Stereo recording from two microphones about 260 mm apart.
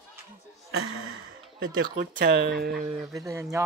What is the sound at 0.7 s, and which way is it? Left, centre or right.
Gasp, right.